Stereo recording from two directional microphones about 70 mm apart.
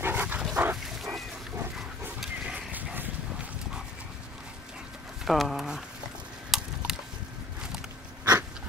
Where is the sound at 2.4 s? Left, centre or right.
Right.